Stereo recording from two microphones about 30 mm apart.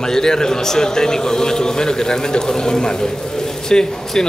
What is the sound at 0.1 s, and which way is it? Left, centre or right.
A man's voice, left.